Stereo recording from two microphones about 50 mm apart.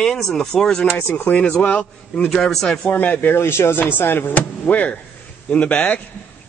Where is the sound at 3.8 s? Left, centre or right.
Left.